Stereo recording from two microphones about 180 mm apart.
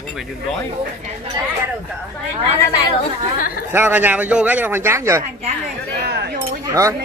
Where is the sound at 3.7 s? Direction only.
10° right (ahead or behind).